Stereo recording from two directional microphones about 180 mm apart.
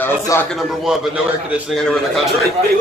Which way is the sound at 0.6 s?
5° right (ahead or behind).